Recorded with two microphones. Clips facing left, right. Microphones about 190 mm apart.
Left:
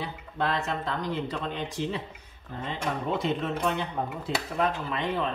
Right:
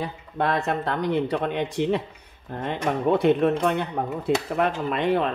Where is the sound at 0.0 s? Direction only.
55° right (ahead or behind).